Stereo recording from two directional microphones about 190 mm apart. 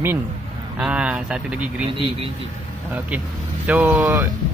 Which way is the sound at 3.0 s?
5° right (ahead or behind).